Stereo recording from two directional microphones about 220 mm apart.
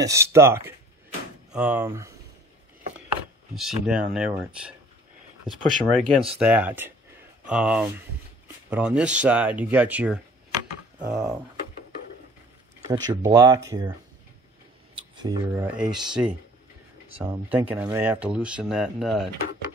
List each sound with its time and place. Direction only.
0.0 s speech: 15° right (ahead or behind)
3.5 s speech: centre (ahead or behind)
12.8 s speech: 15° right (ahead or behind)
15.0 s a sound: 20° right (ahead or behind)
15.8 s speech: 5° right (ahead or behind)